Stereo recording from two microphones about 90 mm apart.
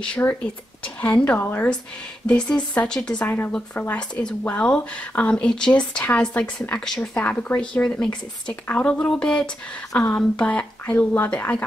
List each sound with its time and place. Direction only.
0.2 s speech: 30° left (ahead or behind)
1.0 s a woman's voice: 15° left (ahead or behind)
1.4 s speech: 25° left (ahead or behind)
2.2 s a woman's voice: 10° left (ahead or behind)
3.3 s speech: 20° left (ahead or behind)
3.9 s a woman's voice: 10° left (ahead or behind)